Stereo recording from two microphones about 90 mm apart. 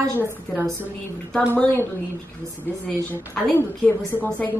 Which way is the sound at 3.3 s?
15° left (ahead or behind).